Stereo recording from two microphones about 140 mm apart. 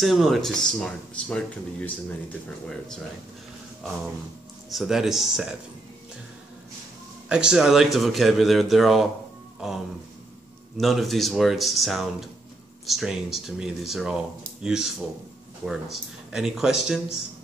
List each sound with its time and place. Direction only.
0.0 s speech: centre (ahead or behind)
4.6 s speech: centre (ahead or behind)
7.2 s speech: 5° right (ahead or behind)
10.8 s speech: centre (ahead or behind)